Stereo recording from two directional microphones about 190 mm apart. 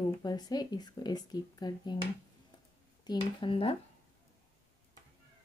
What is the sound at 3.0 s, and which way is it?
Speech, 25° left (ahead or behind).